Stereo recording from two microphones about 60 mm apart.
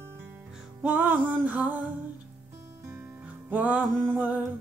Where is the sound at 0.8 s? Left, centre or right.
Right.